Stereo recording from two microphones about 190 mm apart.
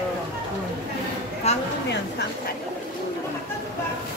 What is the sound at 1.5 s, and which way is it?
Speech, 35° left (ahead or behind).